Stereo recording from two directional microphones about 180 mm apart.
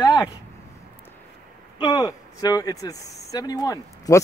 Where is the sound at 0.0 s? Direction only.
20° left (ahead or behind).